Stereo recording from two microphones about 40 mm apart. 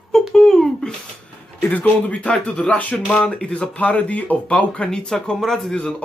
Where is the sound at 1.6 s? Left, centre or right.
Left.